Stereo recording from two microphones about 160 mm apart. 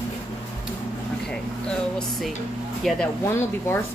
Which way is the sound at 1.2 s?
Centre (ahead or behind).